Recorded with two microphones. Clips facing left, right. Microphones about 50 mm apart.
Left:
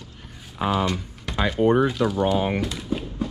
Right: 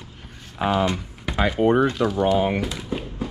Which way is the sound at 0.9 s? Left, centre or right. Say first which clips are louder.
Right 2 dB; centre.